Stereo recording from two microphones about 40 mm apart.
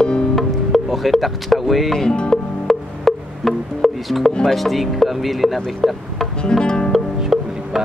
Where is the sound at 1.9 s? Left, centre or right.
Left.